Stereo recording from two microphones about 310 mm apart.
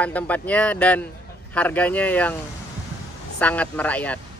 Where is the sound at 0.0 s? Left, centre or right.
Centre.